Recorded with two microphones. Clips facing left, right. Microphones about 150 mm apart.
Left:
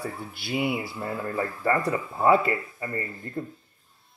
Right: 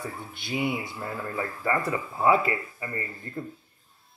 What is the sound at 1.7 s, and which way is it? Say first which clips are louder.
Speech: left 2 dB; centre (ahead or behind).